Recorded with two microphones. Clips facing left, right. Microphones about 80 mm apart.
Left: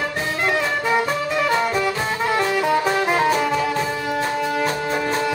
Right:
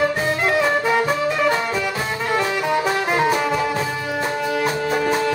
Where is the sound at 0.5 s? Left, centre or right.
Centre.